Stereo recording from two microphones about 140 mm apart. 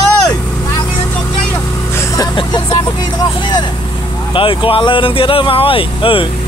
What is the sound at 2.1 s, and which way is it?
Vehicle, 30° left (ahead or behind).